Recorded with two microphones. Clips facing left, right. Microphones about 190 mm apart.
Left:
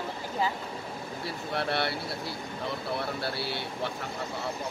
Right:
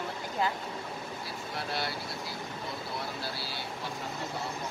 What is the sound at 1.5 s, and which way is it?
Speech, 65° left (ahead or behind).